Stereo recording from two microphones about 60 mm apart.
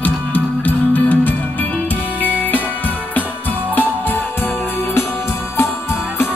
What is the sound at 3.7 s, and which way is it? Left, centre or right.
Music, left.